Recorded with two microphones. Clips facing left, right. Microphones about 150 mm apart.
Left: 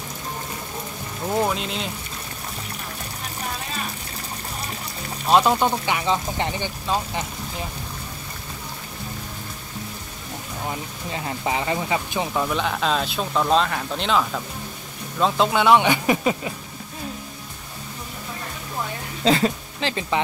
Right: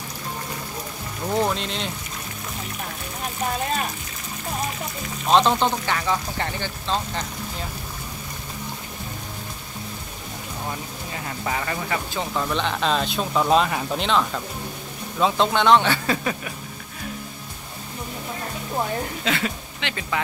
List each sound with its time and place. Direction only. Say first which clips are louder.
1.3 s speech: even; 5° left (ahead or behind)
5.3 s speech: left 1 dB; 10° left (ahead or behind)
11.2 s speech: left 3 dB; 20° left (ahead or behind)
12.4 s speech: even; 5° left (ahead or behind)
19.2 s speech: left 12 dB; 35° left (ahead or behind)